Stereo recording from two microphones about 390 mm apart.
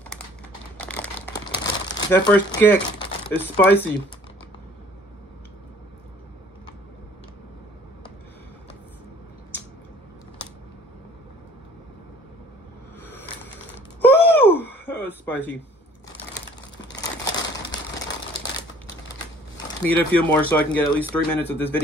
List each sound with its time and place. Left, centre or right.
0.7 s a sound: centre
1.9 s speech: centre
14.0 s wail: centre
16.3 s crumpling: left
17.2 s crumpling: centre
19.8 s speech: centre